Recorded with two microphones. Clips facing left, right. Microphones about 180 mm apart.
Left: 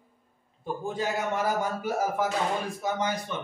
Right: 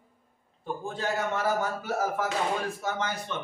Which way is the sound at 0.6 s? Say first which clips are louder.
Left 2 dB; 10° left (ahead or behind).